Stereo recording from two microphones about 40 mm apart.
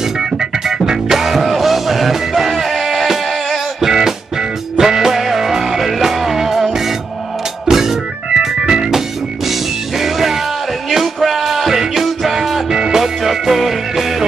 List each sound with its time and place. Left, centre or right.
0.2 s music: centre
3.8 s music: centre
13.0 s music: centre